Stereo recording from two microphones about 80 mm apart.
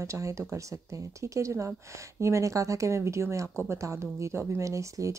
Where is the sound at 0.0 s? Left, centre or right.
Right.